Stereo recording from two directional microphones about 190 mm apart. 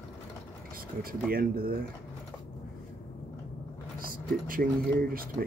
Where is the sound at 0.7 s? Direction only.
50° right (ahead or behind).